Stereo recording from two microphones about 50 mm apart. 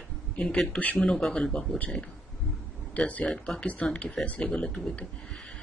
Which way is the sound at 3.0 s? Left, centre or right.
Left.